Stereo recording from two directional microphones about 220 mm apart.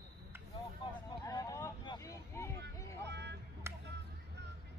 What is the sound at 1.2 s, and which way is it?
Speech, 15° left (ahead or behind).